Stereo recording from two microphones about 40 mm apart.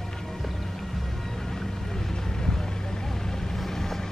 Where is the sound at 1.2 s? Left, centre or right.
Centre.